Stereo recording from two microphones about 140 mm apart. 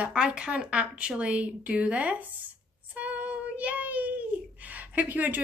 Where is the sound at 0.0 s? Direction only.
5° right (ahead or behind).